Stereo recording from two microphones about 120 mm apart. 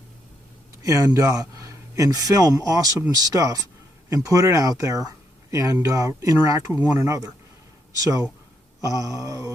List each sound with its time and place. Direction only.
0.8 s speech: 25° right (ahead or behind)
8.8 s speech: 30° right (ahead or behind)